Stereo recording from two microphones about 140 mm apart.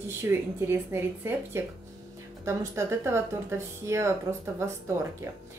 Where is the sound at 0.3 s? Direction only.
15° right (ahead or behind).